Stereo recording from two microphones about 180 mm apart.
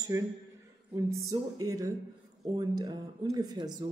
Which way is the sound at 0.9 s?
20° right (ahead or behind).